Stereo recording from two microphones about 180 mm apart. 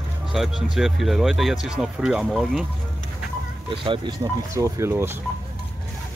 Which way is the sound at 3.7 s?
30° right (ahead or behind).